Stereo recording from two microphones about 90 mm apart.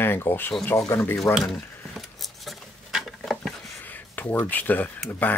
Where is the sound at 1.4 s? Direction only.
Centre (ahead or behind).